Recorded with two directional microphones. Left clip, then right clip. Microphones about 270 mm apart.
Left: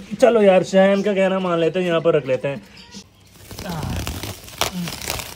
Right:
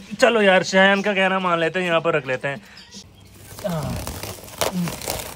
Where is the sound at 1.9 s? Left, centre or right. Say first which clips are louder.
Left 2 dB; right.